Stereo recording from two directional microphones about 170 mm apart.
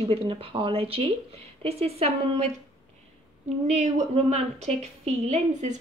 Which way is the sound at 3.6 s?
40° right (ahead or behind).